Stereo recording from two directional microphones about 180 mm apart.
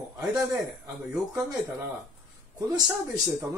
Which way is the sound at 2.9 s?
10° right (ahead or behind).